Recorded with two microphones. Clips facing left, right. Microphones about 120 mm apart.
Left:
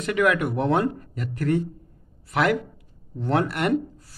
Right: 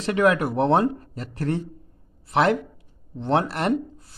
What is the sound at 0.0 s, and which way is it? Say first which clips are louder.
Speech: right 2 dB; 30° right (ahead or behind).